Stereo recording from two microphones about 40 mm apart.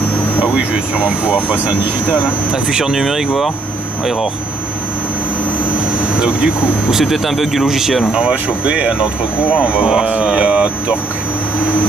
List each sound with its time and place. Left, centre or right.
0.4 s speech: right
2.8 s speech: centre
6.1 s speech: right
6.9 s speech: centre
8.1 s speech: right
9.8 s speech: centre